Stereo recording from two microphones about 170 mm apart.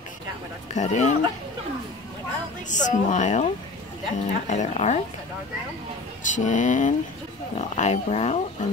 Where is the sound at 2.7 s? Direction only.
45° left (ahead or behind).